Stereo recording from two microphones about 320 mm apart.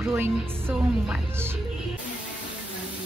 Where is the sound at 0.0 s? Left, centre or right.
Centre.